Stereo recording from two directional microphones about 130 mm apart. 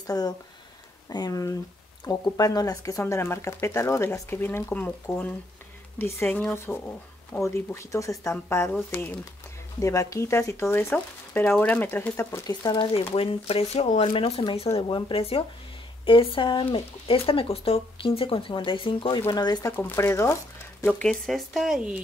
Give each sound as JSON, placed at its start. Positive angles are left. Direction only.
{"t": 0.0, "sound": "speech", "side_deg": 30}
{"t": 9.8, "sound": "speech", "side_deg": 25}
{"t": 12.6, "sound": "speech", "side_deg": 40}
{"t": 19.7, "sound": "speech", "side_deg": 20}
{"t": 20.8, "sound": "speech", "side_deg": 5}